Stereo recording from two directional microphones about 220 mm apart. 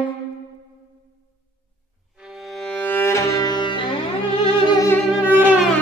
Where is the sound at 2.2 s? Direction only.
Centre (ahead or behind); by 4.0 s 20° left (ahead or behind).